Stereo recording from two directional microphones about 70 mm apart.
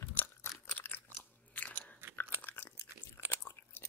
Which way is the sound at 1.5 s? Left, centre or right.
Left.